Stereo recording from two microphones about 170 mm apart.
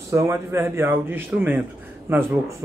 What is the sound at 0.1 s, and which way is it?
A man's voice, 15° right (ahead or behind).